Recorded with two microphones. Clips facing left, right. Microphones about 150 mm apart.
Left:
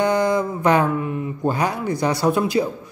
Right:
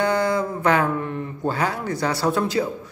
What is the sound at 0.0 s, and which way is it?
Speech, 15° left (ahead or behind).